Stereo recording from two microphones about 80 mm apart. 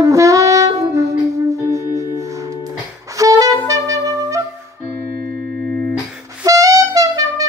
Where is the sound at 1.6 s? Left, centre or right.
Right.